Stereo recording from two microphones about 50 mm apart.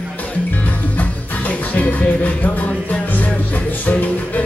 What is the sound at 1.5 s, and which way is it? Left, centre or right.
Music, left.